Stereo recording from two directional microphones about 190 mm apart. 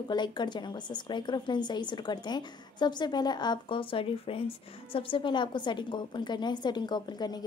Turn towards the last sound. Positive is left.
turn(degrees=20)  # may be behind; listen again after turning